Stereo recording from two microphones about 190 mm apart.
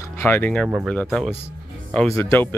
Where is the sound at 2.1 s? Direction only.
15° left (ahead or behind).